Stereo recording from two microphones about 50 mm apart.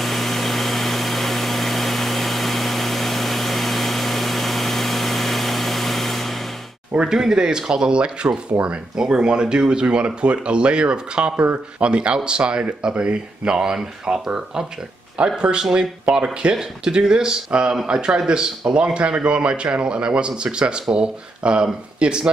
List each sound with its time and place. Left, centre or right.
0.0 s vehicle: centre
7.0 s speech: centre